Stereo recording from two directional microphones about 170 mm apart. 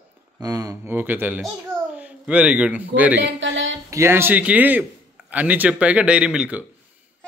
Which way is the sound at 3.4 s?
90° right.